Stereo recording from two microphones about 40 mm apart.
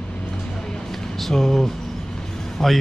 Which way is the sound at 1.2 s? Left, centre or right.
Centre.